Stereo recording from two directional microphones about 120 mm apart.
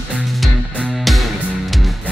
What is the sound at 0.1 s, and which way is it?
Music, centre (ahead or behind).